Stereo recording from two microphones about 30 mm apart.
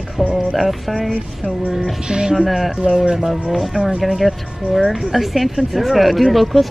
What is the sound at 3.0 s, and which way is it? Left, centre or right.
Speech, centre.